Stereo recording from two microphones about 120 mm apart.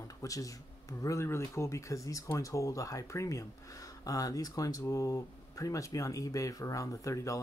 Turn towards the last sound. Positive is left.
turn(degrees=25)  # may be behind; listen again after turning